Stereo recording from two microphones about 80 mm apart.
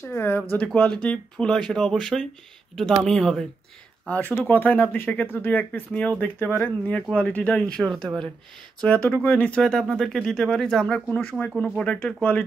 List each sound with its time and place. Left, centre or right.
0.0 s speech: left
0.7 s speech: centre
4.0 s speech: centre
6.4 s speech: left
7.0 s speech: centre
11.5 s speech: centre
11.8 s speech: centre